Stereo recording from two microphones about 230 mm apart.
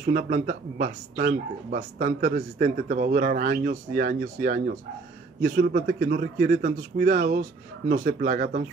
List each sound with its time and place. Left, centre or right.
0.0 s speech: right